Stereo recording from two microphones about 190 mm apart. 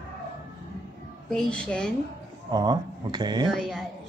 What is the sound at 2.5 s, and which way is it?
Speech, 20° right (ahead or behind).